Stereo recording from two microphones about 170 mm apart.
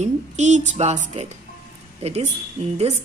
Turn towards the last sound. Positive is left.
turn(degrees=-40)  # may be behind; listen again after turning